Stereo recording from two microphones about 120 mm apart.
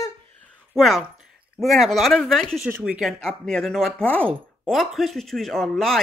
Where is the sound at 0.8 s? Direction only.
Centre (ahead or behind).